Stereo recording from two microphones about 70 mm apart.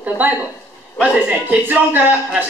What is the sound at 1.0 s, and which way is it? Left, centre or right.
Speech, right.